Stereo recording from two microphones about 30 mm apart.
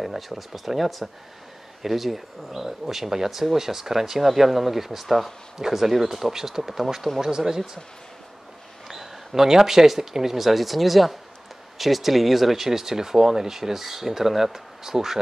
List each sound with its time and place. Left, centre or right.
0.0 s speech: centre
5.6 s speech: centre
8.8 s speech: centre